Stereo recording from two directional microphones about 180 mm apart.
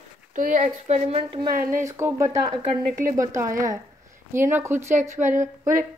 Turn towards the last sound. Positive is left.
turn(degrees=-45)  # may be behind; listen again after turning